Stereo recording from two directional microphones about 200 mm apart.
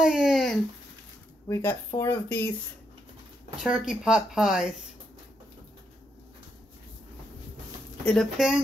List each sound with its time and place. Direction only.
0.0 s a sound: 5° right (ahead or behind)
1.5 s speech: 10° left (ahead or behind)
3.6 s speech: 5° right (ahead or behind)
8.0 s speech: 5° left (ahead or behind)